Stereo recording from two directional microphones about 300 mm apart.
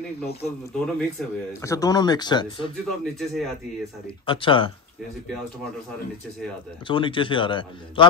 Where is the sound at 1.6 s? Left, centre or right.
Centre.